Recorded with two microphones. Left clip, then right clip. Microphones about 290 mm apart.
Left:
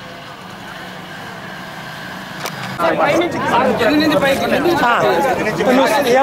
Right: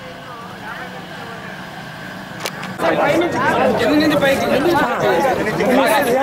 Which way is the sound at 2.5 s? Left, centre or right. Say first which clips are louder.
Left 1 dB; centre.